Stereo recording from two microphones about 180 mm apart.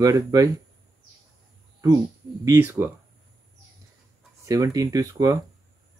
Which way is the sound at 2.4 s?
15° right (ahead or behind).